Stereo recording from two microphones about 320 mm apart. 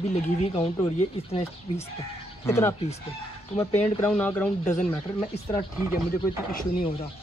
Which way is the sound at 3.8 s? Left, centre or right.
Centre.